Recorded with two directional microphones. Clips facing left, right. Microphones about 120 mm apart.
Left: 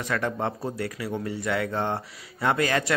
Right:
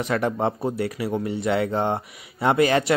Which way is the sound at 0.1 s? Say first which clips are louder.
Right 4 dB; 20° right (ahead or behind).